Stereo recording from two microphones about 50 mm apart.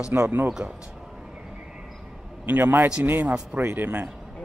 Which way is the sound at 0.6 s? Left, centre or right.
Right.